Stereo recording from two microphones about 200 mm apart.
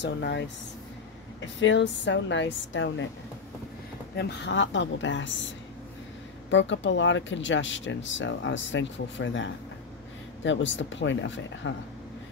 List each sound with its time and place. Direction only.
0.0 s a woman's voice: 60° left (ahead or behind)
4.1 s a woman's voice: 55° left (ahead or behind)
6.5 s speech: 65° left (ahead or behind)